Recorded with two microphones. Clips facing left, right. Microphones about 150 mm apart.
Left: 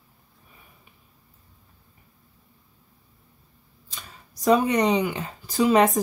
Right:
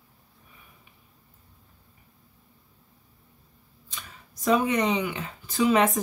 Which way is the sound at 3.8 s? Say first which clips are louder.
Even; 35° left (ahead or behind).